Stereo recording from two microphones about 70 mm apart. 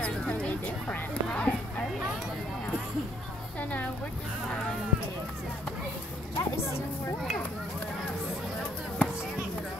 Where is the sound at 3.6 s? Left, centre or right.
Left.